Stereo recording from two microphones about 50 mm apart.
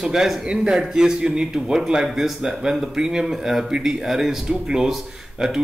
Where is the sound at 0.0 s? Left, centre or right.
Centre.